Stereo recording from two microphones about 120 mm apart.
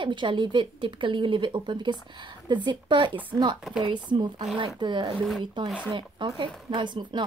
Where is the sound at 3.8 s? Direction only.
40° right (ahead or behind).